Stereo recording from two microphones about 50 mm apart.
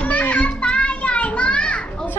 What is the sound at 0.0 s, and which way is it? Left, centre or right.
Children playing, left.